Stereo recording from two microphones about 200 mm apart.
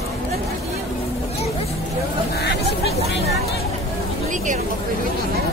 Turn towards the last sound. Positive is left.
turn(degrees=-40)  # may be behind; listen again after turning